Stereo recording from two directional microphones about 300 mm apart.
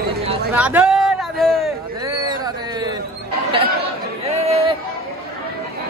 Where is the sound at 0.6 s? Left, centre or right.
Centre.